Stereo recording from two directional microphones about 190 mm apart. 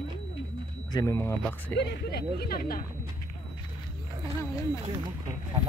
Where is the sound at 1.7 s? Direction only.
65° left (ahead or behind).